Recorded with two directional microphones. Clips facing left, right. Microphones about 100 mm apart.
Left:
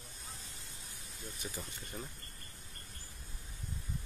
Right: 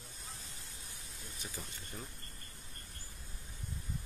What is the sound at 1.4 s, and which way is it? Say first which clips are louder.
Speech: left 2 dB; 15° left (ahead or behind).